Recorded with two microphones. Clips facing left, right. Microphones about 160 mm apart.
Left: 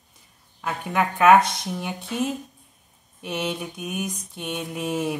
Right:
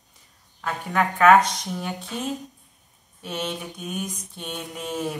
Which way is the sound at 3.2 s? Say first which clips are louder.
Left 2 dB; 10° left (ahead or behind).